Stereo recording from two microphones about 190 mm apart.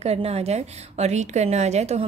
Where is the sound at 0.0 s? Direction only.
35° right (ahead or behind).